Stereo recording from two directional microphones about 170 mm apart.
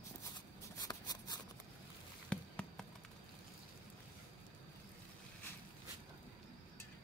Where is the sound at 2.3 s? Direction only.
5° left (ahead or behind).